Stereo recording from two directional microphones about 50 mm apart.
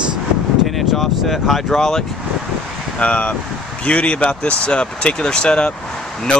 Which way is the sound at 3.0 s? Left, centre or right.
Left.